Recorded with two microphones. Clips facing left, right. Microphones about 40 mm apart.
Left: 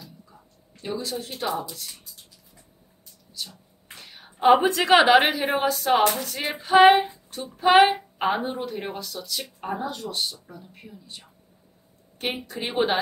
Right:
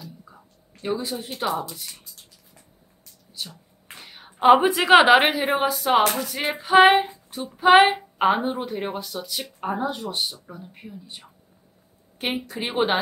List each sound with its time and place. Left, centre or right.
0.8 s a woman's voice: centre
3.9 s a woman's voice: centre
7.0 s a sound: centre
7.5 s a woman's voice: centre